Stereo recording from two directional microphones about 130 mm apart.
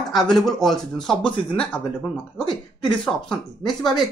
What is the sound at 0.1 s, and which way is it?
Speech, centre (ahead or behind).